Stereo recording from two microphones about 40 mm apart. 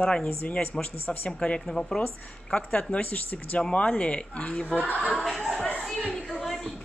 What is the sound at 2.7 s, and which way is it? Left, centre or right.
Speech, left.